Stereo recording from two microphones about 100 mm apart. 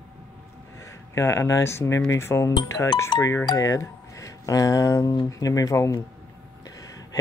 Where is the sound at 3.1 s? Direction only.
40° left (ahead or behind).